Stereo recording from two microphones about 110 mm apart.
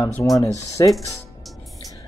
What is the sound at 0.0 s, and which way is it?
Speech, 30° left (ahead or behind).